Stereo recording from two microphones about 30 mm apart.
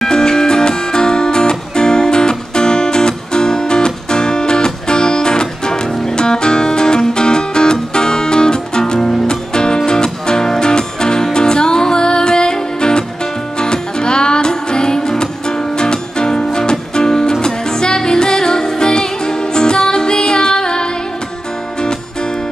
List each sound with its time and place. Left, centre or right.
0.0 s music: left